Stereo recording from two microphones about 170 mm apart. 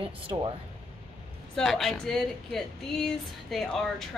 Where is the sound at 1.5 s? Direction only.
Centre (ahead or behind).